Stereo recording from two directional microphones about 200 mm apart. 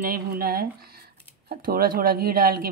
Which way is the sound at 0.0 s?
45° right (ahead or behind).